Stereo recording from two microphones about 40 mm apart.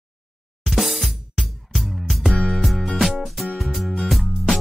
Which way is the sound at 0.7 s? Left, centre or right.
Centre.